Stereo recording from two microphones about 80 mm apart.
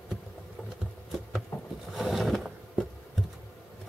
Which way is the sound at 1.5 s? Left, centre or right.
Left.